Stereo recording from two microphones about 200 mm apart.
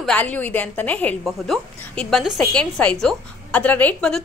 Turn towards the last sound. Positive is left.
turn(degrees=5)  # may be behind; listen again after turning